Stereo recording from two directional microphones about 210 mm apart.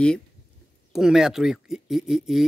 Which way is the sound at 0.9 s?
Centre (ahead or behind).